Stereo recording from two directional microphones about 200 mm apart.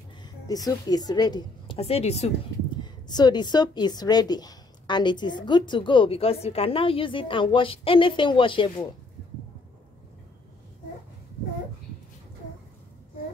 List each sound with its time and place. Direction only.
0.2 s a woman's voice: 20° left (ahead or behind)
2.8 s speech: 20° left (ahead or behind)